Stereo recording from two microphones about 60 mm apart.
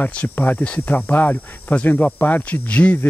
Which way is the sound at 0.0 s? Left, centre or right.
Centre.